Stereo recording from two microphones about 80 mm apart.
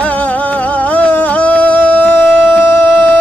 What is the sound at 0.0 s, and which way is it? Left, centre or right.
Music, centre.